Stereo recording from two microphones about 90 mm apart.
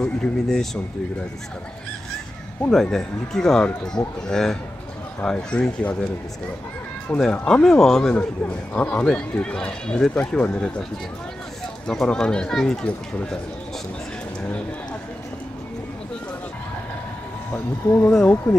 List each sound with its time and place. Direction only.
0.0 s speech: 5° left (ahead or behind)
2.7 s speech: 5° left (ahead or behind)
7.3 s speech: 15° left (ahead or behind)
11.9 s speech: 5° left (ahead or behind)
17.5 s speech: 20° left (ahead or behind)
18.5 s speech: 10° left (ahead or behind)